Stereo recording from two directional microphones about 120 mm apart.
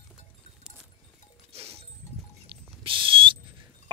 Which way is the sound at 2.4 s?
45° right (ahead or behind).